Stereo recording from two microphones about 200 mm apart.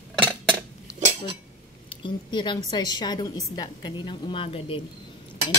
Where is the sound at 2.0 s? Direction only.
25° left (ahead or behind).